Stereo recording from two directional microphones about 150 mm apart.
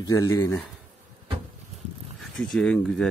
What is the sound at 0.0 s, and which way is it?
Speech, 20° left (ahead or behind).